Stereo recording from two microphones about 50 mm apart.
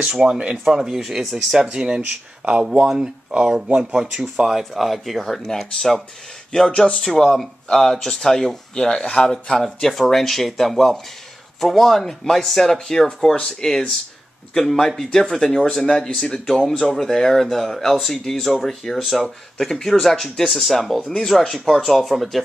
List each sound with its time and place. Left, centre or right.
0.0 s speech: centre
4.5 s speech: centre